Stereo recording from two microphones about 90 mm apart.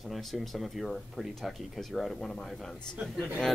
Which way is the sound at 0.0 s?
Centre (ahead or behind).